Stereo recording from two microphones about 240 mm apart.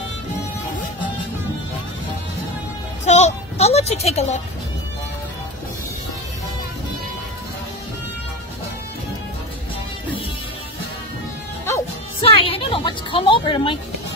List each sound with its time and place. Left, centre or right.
3.1 s music: left
12.2 s a woman's voice: left